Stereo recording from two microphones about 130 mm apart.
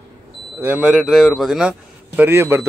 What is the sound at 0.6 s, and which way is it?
A man's voice, 10° right (ahead or behind).